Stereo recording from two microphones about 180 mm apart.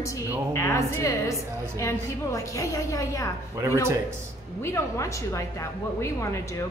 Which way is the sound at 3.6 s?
15° right (ahead or behind).